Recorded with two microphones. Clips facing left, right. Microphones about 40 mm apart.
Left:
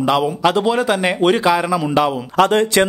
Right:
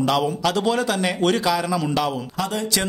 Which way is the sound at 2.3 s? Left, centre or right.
Left.